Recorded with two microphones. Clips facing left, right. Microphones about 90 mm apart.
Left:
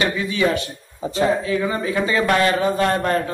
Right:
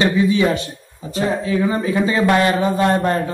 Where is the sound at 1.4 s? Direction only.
20° right (ahead or behind).